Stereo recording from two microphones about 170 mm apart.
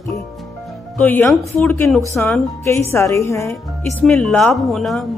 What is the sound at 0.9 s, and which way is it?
A woman's voice, 10° left (ahead or behind).